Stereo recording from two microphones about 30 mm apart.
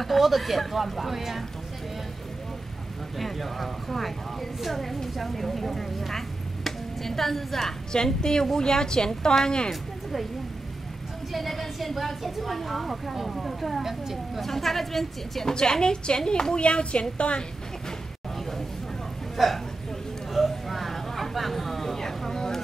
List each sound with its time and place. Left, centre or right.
0.0 s a woman's voice: centre
3.2 s a woman's voice: centre
7.9 s a woman's voice: left
11.3 s a woman's voice: centre
13.8 s speech: centre
14.4 s speech: centre
15.5 s a woman's voice: left
16.6 s a woman's voice: left
19.3 s a woman's voice: centre
20.3 s vehicle: centre
21.9 s vehicle: centre